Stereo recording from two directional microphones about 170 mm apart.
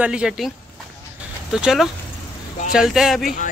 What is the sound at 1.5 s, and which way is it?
Speech, 5° right (ahead or behind).